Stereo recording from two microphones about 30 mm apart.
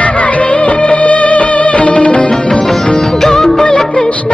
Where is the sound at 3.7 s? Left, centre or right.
Left.